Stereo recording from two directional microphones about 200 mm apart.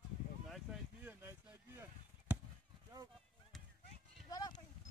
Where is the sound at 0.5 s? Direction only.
5° right (ahead or behind).